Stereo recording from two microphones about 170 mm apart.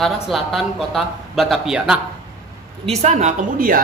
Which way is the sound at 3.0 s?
45° right (ahead or behind).